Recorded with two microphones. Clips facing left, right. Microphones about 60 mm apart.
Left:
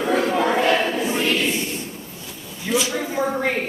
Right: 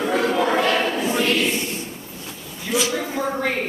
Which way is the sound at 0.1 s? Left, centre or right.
Left.